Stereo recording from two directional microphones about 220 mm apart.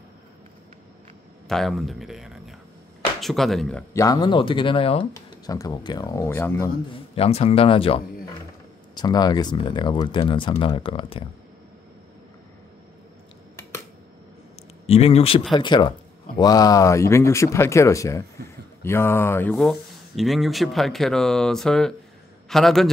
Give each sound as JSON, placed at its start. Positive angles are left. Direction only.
{"t": 1.5, "sound": "speech", "side_deg": 0}
{"t": 4.0, "sound": "speech", "side_deg": 20}
{"t": 6.9, "sound": "speech", "side_deg": 25}
{"t": 14.9, "sound": "speech", "side_deg": 25}
{"t": 19.5, "sound": "speech", "side_deg": 0}